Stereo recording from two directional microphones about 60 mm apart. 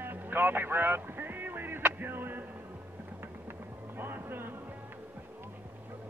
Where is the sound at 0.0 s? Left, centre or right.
Right.